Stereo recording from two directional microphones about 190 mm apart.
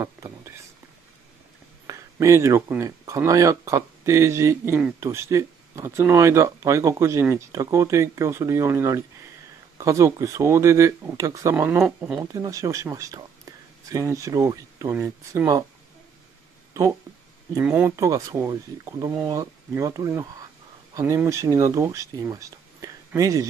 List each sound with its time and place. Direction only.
0.0 s whispering: 15° right (ahead or behind)
1.9 s speech: 15° right (ahead or behind)
17.6 s speech: 10° right (ahead or behind)